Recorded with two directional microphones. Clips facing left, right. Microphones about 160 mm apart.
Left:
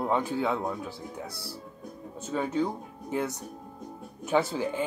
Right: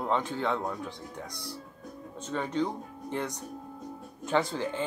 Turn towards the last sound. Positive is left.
turn(degrees=10)  # may be behind; listen again after turning